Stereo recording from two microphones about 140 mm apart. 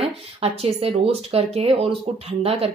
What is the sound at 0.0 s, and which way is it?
A woman's voice, 45° right (ahead or behind).